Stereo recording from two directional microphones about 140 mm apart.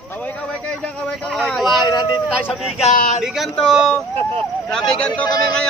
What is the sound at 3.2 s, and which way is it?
Speech, centre (ahead or behind).